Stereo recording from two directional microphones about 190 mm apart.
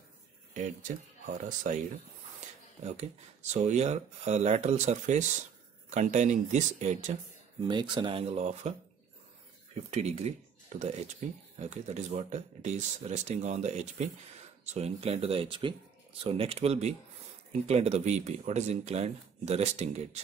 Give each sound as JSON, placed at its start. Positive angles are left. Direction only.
{"t": 0.6, "sound": "speech", "side_deg": -45}
{"t": 2.8, "sound": "speech", "side_deg": -35}
{"t": 7.6, "sound": "speech", "side_deg": -25}
{"t": 9.8, "sound": "speech", "side_deg": -35}